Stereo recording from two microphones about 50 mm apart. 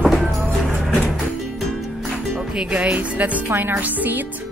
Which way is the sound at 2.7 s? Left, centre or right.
Right.